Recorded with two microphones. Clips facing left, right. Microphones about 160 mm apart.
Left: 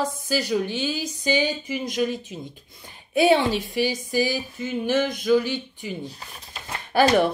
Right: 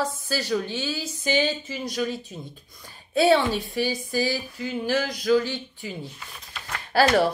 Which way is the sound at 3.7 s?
15° left (ahead or behind).